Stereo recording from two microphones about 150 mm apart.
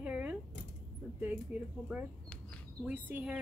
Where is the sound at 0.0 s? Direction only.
10° right (ahead or behind).